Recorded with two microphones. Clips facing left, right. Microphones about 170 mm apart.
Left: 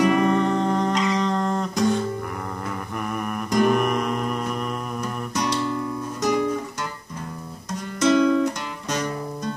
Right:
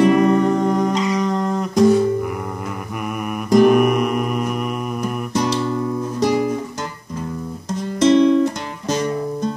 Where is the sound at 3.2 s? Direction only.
10° right (ahead or behind).